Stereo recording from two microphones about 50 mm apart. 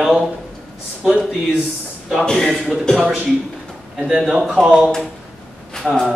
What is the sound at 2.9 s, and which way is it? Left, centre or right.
Speech, centre.